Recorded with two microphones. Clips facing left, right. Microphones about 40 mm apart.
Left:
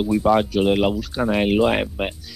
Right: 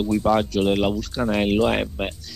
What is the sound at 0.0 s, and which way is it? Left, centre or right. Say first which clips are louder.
Speech: left 2 dB; centre.